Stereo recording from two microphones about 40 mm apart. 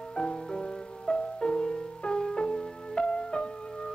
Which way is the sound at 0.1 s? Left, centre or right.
Left.